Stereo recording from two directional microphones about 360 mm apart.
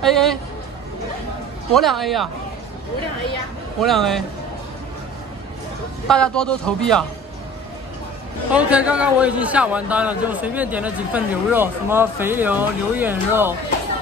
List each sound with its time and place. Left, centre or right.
0.0 s a man's voice: centre
1.7 s a man's voice: centre
3.8 s a man's voice: centre
6.0 s a man's voice: centre
8.5 s a man's voice: centre